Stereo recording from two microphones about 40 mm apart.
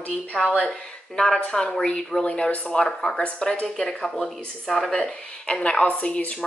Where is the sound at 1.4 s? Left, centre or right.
Left.